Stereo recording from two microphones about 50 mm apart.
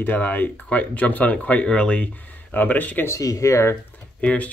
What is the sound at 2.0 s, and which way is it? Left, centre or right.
Speech, left.